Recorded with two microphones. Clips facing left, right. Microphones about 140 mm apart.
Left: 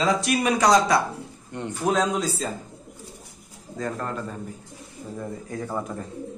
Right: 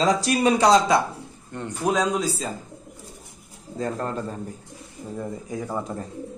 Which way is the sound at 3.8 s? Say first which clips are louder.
Right 2 dB; 25° right (ahead or behind).